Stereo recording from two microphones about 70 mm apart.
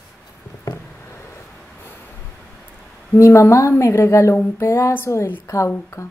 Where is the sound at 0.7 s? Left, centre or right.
Left.